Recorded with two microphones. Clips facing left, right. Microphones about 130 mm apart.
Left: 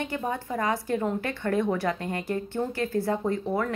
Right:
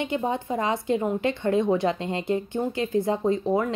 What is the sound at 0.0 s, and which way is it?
Speech, 20° right (ahead or behind).